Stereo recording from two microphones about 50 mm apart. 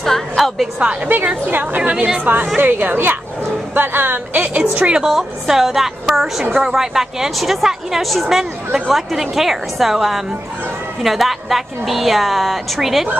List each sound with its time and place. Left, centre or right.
0.0 s music: centre
1.1 s a woman's voice: right
1.8 s a woman's voice: right
2.5 s a woman's voice: right
5.0 s a woman's voice: centre